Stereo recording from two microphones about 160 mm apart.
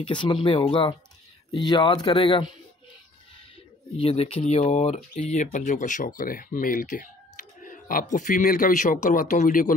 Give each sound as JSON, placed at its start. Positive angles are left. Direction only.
{"t": 0.0, "sound": "speech", "side_deg": 30}
{"t": 4.0, "sound": "speech", "side_deg": 35}